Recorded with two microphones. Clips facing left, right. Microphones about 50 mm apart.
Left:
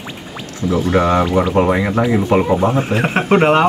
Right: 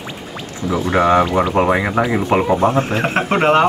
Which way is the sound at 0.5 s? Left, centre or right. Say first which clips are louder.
Left 1 dB; right.